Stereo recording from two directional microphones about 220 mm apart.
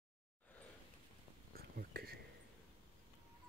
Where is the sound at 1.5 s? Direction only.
45° right (ahead or behind).